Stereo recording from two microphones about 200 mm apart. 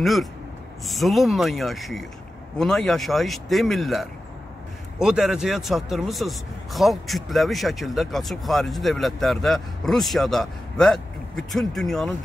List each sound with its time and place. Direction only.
0.0 s speech: centre (ahead or behind)